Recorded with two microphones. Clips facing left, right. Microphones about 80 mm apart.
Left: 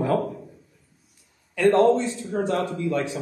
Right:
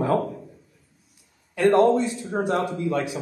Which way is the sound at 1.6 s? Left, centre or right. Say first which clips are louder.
Even; right.